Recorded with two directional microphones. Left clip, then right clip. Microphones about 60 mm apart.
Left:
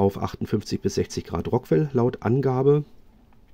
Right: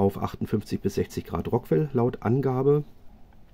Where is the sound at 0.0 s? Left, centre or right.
Left.